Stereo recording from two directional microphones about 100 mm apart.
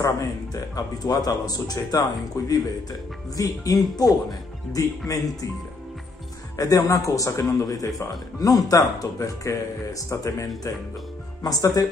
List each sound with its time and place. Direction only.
0.0 s speech: 35° left (ahead or behind)
6.5 s speech: 35° left (ahead or behind)